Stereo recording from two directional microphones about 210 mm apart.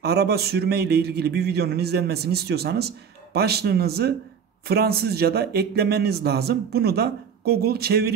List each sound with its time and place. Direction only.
0.0 s a man's voice: 50° right (ahead or behind)